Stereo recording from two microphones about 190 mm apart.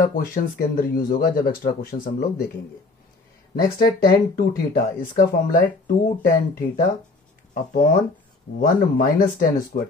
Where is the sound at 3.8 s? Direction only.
50° left (ahead or behind).